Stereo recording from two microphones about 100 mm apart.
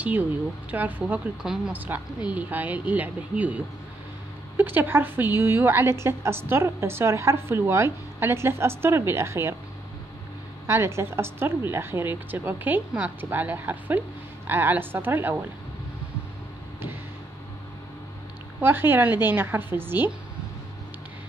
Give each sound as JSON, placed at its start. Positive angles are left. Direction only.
{"t": 0.0, "sound": "speech", "side_deg": -15}
{"t": 1.9, "sound": "a woman's voice", "side_deg": -20}
{"t": 10.7, "sound": "a woman's voice", "side_deg": -25}
{"t": 18.6, "sound": "a woman's voice", "side_deg": -20}